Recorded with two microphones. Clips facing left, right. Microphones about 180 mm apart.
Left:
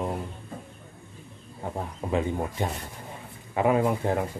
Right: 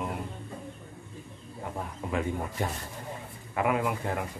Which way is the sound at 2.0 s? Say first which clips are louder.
Left 5 dB; 30° left (ahead or behind).